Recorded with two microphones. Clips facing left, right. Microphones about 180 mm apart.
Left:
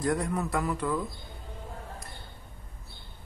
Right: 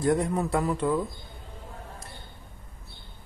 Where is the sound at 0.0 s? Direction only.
25° right (ahead or behind).